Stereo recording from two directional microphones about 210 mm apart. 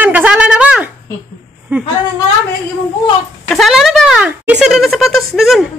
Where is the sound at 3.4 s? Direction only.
Centre (ahead or behind).